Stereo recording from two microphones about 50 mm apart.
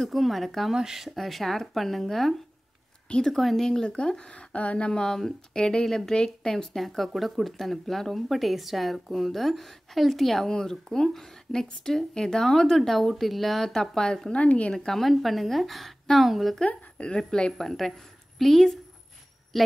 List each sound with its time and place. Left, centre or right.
0.0 s speech: centre
0.7 s speech: centre
14.3 s speech: left
14.7 s speech: centre
15.0 s speech: centre
16.6 s speech: left; by 19.7 s centre